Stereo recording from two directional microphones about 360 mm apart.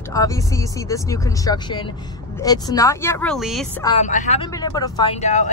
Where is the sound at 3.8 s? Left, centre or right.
Centre.